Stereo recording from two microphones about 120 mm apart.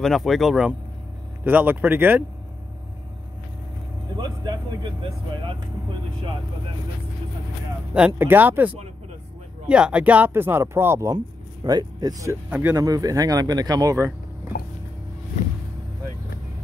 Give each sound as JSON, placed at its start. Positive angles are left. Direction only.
{"t": 0.0, "sound": "speech", "side_deg": 0}
{"t": 1.4, "sound": "speech", "side_deg": -15}
{"t": 4.2, "sound": "speech", "side_deg": -40}
{"t": 8.2, "sound": "speech", "side_deg": -15}
{"t": 11.1, "sound": "speech", "side_deg": -35}
{"t": 12.4, "sound": "speech", "side_deg": -15}
{"t": 12.7, "sound": "speech", "side_deg": -30}